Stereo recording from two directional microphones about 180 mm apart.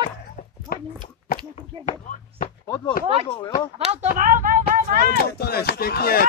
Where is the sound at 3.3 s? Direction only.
25° left (ahead or behind).